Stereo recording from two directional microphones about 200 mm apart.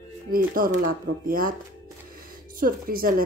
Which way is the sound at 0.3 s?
45° right (ahead or behind).